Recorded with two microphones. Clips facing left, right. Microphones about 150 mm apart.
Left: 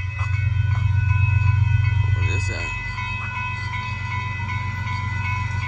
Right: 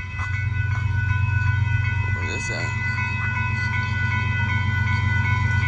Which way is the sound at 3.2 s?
20° left (ahead or behind).